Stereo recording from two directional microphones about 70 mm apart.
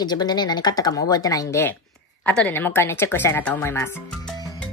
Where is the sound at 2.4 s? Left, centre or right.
Left.